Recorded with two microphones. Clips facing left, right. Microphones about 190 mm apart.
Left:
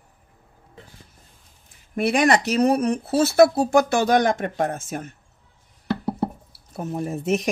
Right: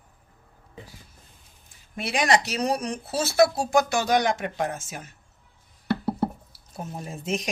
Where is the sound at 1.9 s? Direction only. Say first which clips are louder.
Left 5 dB; 55° left (ahead or behind).